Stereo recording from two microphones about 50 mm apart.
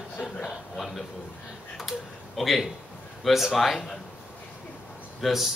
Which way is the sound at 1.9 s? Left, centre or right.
Centre.